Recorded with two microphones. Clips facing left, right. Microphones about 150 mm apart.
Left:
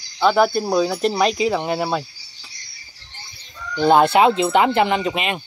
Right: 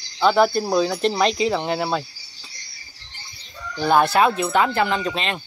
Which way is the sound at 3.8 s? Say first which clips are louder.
Left 3 dB; 20° left (ahead or behind).